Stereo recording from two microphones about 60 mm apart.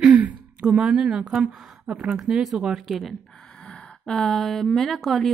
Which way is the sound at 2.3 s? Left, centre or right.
Centre.